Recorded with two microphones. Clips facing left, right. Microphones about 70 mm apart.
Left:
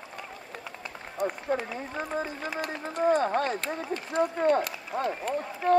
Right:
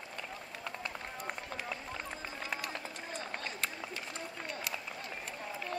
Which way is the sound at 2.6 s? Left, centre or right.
Left.